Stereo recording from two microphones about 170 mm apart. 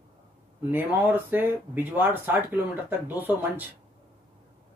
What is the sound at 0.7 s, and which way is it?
Speech, 10° right (ahead or behind).